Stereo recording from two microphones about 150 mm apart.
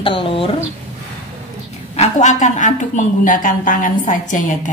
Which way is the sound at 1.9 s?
50° left (ahead or behind).